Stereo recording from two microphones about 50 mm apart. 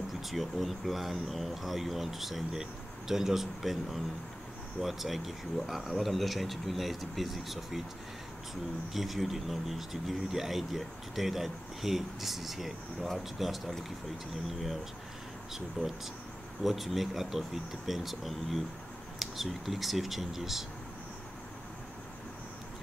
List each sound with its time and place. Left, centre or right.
0.3 s a man's voice: centre
8.9 s speech: centre
15.8 s speech: right
16.6 s speech: centre